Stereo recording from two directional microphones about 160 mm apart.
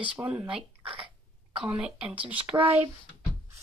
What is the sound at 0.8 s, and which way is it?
Cough, 35° right (ahead or behind).